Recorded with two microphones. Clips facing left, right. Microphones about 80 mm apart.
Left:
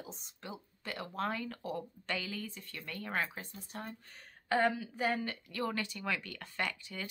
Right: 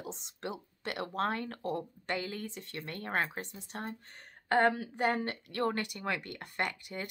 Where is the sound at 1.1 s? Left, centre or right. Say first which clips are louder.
Right 3 dB; right.